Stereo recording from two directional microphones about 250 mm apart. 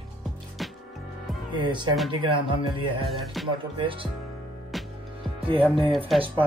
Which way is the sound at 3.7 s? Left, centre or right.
Right.